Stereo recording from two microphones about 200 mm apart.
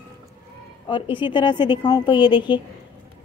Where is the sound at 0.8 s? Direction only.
25° left (ahead or behind).